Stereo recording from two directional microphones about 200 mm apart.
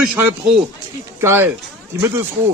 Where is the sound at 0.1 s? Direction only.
5° right (ahead or behind).